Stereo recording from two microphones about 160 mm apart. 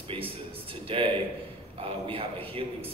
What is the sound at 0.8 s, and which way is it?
A man's voice, 35° right (ahead or behind).